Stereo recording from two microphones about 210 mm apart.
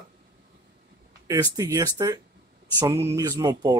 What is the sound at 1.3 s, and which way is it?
Speech, 15° right (ahead or behind).